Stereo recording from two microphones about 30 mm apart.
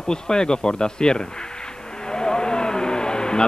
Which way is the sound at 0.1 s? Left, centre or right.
Left.